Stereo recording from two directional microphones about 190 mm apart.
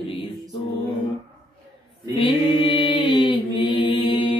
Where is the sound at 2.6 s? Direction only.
25° left (ahead or behind).